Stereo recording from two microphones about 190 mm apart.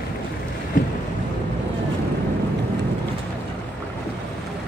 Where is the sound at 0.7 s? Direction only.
45° left (ahead or behind).